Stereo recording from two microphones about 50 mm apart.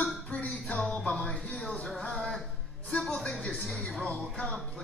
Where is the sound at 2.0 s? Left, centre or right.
Centre.